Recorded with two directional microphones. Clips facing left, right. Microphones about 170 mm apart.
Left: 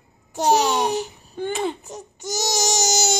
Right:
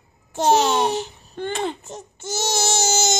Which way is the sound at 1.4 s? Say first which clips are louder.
Left 1 dB; 10° left (ahead or behind).